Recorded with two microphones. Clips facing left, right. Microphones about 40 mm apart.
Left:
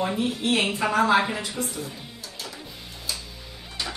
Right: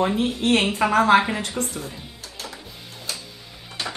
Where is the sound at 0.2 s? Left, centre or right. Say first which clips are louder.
Right 3 dB; right.